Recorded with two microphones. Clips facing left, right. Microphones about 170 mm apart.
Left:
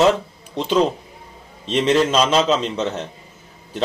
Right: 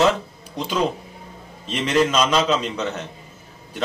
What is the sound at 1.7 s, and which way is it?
Speech, 30° left (ahead or behind).